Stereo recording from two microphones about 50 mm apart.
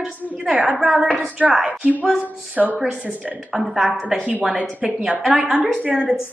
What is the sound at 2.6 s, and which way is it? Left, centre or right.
A woman's voice, centre.